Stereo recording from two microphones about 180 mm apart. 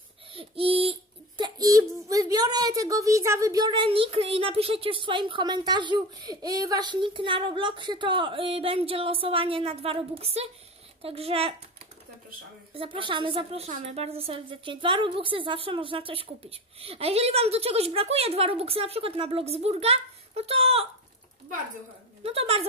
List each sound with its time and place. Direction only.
0.3 s a sound: 30° right (ahead or behind)
1.4 s a child's voice: 20° right (ahead or behind)
12.7 s a woman's voice: 30° right (ahead or behind)
22.2 s a woman's voice: 35° right (ahead or behind)